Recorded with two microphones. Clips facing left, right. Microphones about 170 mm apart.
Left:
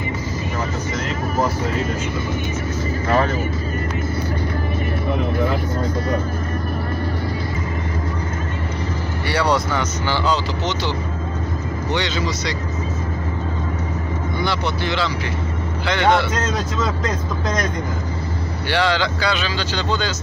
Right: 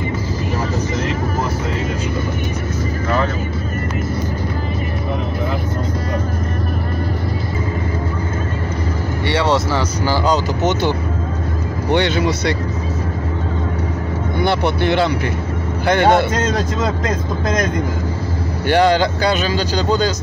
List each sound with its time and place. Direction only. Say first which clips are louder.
9.3 s a man's voice: right 2 dB; 25° right (ahead or behind); by 12.5 s 60° right (ahead or behind)
14.4 s a man's voice: right 7 dB; 55° right (ahead or behind)
18.7 s speech: right 6 dB; 45° right (ahead or behind)